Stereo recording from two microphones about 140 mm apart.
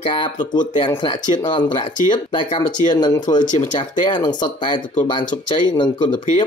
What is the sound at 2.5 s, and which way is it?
Speech, 30° left (ahead or behind).